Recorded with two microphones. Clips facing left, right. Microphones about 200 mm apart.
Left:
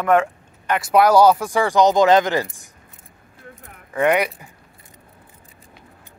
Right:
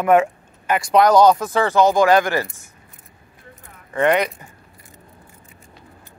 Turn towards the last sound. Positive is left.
turn(degrees=10)  # may be behind; listen again after turning